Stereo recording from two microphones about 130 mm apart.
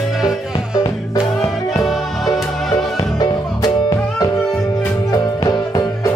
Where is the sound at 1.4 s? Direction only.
25° left (ahead or behind).